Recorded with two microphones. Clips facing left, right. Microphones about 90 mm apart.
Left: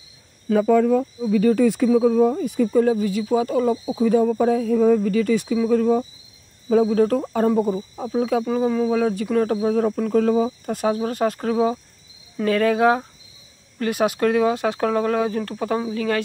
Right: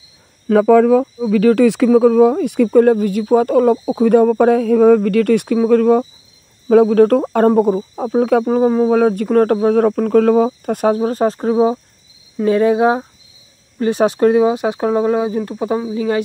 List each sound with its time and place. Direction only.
0.5 s speech: 90° right; by 8.5 s 55° right (ahead or behind)
8.5 s speech: 40° right (ahead or behind); by 16.2 s 20° right (ahead or behind)